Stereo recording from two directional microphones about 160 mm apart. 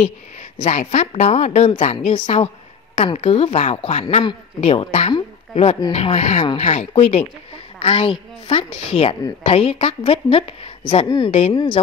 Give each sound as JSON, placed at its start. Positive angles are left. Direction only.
{"t": 0.6, "sound": "a woman's voice", "side_deg": 45}